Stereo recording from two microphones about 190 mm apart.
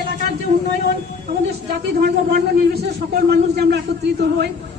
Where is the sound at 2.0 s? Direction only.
60° right (ahead or behind).